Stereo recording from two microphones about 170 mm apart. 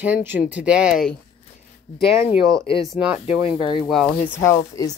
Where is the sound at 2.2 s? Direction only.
15° right (ahead or behind).